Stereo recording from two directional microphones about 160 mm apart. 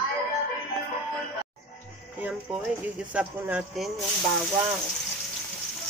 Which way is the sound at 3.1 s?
10° right (ahead or behind).